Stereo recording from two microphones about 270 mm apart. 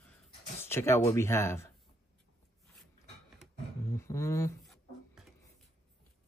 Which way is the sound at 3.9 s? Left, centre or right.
Centre.